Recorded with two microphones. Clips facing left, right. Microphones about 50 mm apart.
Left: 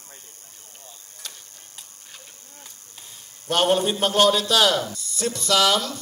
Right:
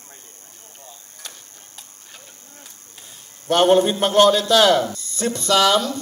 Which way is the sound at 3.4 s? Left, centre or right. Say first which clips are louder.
Right 5 dB; right.